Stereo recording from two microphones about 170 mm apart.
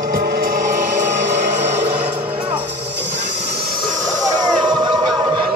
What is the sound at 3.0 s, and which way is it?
Train, 40° right (ahead or behind).